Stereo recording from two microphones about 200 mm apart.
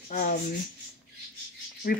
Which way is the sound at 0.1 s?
40° left (ahead or behind).